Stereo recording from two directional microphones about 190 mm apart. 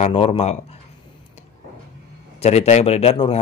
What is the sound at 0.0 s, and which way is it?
Speech, 30° left (ahead or behind).